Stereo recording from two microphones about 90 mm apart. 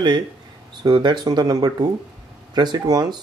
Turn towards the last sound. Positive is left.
turn(degrees=-50)  # may be behind; listen again after turning